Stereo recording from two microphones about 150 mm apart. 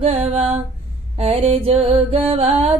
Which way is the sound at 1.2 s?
40° right (ahead or behind).